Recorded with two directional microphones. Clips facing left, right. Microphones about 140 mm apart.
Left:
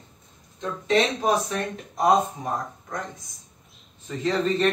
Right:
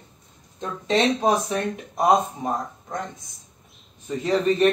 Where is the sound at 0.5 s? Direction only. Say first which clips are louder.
Even; 30° right (ahead or behind).